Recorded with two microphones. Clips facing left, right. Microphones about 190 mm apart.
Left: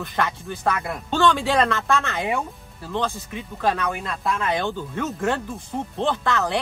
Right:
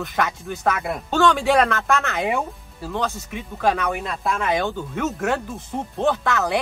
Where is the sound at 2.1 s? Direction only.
15° right (ahead or behind).